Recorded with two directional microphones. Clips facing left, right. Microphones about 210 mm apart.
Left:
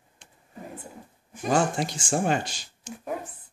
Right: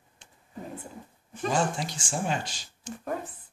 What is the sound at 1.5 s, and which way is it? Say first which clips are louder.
Speech: left 5 dB; 55° left (ahead or behind).